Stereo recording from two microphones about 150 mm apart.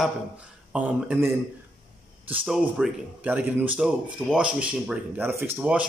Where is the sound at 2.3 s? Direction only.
5° right (ahead or behind).